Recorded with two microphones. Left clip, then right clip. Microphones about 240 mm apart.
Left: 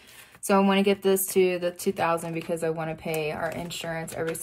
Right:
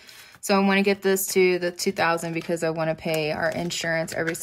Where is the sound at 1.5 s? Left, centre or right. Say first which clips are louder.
Right 3 dB; right.